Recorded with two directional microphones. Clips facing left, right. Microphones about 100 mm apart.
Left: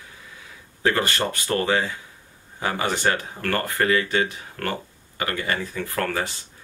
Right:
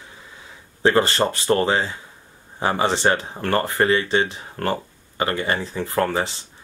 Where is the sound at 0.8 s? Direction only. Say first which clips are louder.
Right 5 dB; 30° right (ahead or behind).